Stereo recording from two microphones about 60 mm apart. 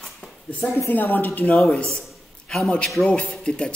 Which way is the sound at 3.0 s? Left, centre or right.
Centre.